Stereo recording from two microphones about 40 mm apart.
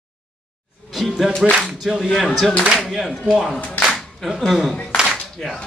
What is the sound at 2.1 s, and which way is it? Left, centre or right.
Speech, centre.